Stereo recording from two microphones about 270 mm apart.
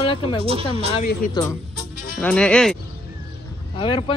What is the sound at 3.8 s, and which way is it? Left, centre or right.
Speech, centre.